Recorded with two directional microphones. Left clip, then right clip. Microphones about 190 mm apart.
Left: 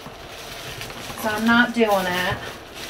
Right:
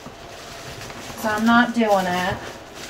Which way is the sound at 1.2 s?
30° right (ahead or behind).